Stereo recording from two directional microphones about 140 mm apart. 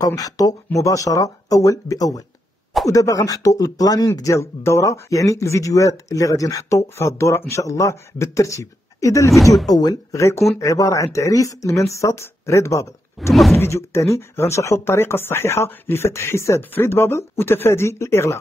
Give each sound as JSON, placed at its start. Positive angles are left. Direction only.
{"t": 0.0, "sound": "speech", "side_deg": 25}
{"t": 13.3, "sound": "speech", "side_deg": 0}
{"t": 13.6, "sound": "speech", "side_deg": 20}